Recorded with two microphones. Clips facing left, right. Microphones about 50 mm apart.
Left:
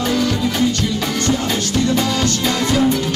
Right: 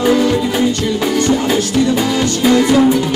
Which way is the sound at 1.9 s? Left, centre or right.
Centre.